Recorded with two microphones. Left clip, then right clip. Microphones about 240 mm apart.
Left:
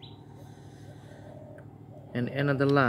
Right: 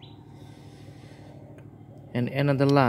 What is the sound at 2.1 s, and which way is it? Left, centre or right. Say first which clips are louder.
Speech: right 3 dB; centre.